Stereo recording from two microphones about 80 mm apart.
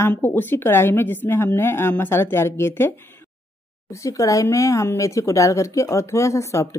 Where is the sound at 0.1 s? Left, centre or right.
Left.